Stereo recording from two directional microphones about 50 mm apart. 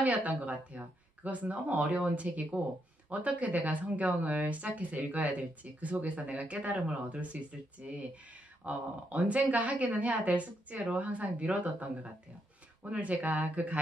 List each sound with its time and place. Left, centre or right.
0.0 s speech: right
8.6 s speech: right